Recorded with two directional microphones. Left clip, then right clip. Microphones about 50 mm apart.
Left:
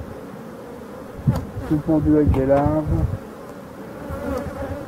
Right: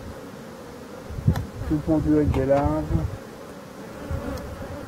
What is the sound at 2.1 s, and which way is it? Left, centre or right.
Speech, centre.